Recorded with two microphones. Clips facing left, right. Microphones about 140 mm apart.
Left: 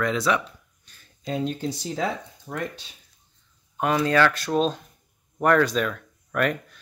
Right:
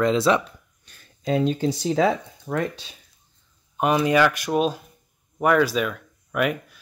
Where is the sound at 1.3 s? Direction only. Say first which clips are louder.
Right 5 dB; 90° right.